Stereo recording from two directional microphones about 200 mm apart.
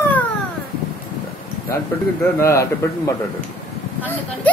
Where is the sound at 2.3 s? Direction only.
15° left (ahead or behind).